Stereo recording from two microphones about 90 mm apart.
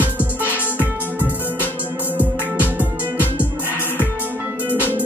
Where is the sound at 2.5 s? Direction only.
20° right (ahead or behind).